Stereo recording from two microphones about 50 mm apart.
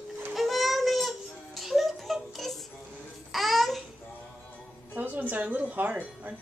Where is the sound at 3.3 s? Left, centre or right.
Centre.